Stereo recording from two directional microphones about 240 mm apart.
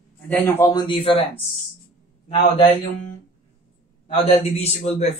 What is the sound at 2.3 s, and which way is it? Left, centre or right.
Speech, left.